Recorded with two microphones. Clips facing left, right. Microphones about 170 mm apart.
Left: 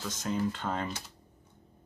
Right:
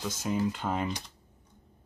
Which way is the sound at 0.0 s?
10° right (ahead or behind).